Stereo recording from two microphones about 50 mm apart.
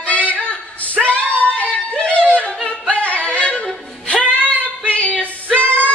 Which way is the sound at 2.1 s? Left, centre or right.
Left.